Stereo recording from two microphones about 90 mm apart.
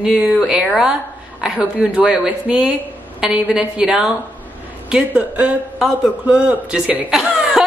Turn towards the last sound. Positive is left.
turn(degrees=-5)  # may be behind; listen again after turning